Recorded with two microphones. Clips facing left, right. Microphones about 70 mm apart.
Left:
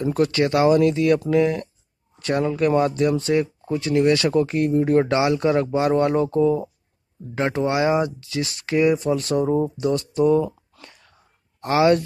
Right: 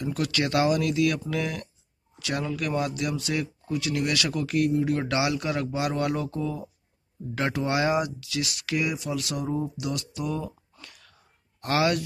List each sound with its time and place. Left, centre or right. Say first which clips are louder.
0.0 s speech: left 8 dB; left
10.8 s whispering: left 3 dB; left
11.6 s speech: left 7 dB; left